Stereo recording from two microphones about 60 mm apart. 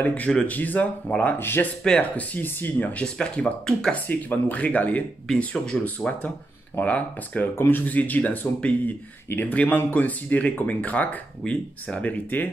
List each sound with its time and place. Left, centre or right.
0.0 s speech: left
1.4 s speech: left
1.9 s speech: left
3.0 s speech: centre
3.9 s speech: left
5.7 s speech: centre
6.8 s speech: left